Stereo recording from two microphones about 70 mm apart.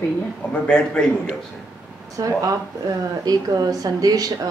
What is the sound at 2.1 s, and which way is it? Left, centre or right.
Speech, right.